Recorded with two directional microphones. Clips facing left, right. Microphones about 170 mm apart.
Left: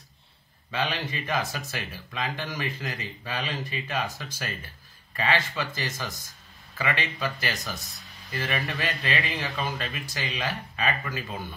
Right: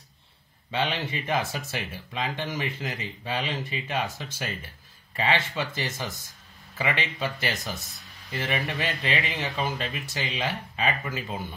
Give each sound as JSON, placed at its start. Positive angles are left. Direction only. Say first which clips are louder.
{"t": 0.7, "sound": "speech", "louder": "right 1 dB", "side_deg": -25}